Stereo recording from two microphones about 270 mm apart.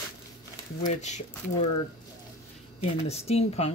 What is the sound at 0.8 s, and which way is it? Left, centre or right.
Speech, left.